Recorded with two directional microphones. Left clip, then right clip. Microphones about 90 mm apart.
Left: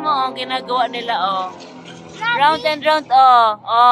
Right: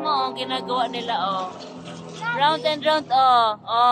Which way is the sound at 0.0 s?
35° left (ahead or behind).